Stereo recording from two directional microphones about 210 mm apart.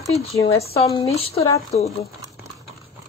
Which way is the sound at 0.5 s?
30° left (ahead or behind).